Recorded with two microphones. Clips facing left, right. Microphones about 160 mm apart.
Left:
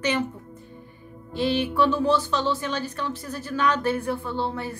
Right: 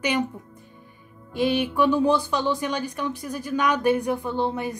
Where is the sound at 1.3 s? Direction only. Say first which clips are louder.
Right 1 dB; 10° right (ahead or behind).